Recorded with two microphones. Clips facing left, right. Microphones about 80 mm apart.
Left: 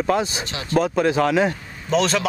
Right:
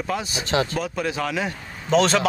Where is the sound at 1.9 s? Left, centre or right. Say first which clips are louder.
Right 1 dB; centre.